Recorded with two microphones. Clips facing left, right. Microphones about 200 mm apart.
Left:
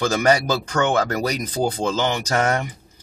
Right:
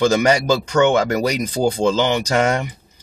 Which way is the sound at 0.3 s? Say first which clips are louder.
Right 2 dB; 15° right (ahead or behind).